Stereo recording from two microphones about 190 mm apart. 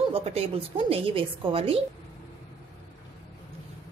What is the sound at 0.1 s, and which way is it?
Speech, 30° right (ahead or behind).